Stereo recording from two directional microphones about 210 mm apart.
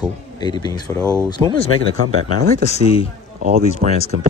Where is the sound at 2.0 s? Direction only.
90° right.